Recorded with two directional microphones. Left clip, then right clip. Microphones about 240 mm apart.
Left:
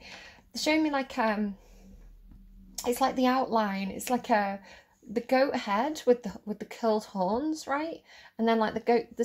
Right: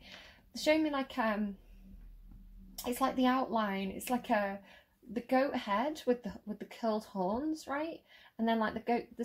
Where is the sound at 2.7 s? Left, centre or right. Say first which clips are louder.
Left 6 dB; left.